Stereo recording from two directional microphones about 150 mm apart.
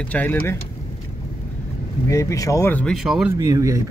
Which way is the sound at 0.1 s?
10° left (ahead or behind).